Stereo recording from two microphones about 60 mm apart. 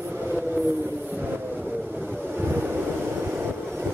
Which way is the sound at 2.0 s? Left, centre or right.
Right.